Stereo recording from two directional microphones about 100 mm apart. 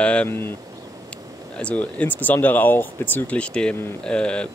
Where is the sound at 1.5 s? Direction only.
10° left (ahead or behind).